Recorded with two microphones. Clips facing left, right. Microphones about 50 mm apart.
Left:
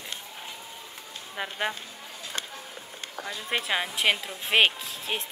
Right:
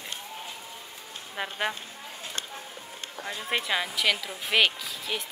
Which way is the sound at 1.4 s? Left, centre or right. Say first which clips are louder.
Even; centre.